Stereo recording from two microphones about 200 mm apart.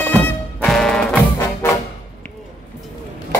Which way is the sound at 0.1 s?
10° left (ahead or behind).